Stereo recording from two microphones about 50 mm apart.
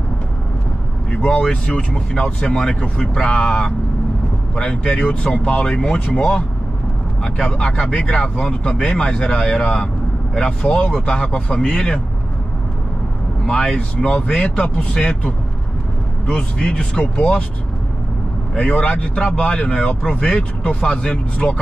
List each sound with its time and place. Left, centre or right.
1.1 s speech: left
13.5 s speech: left
16.3 s speech: centre
18.6 s speech: left